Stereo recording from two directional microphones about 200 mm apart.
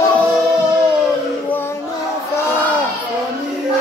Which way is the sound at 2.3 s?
10° left (ahead or behind).